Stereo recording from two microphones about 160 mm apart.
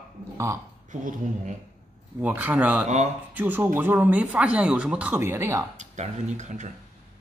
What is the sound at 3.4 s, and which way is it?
Speech, 10° right (ahead or behind).